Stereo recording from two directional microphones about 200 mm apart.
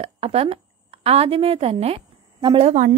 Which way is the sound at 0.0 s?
30° right (ahead or behind).